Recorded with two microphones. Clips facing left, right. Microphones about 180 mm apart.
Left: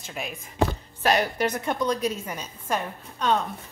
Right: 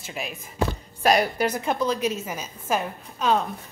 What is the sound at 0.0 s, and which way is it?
A woman's voice, 5° right (ahead or behind).